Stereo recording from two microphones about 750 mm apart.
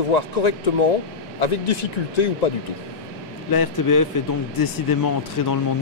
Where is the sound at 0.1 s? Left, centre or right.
Left.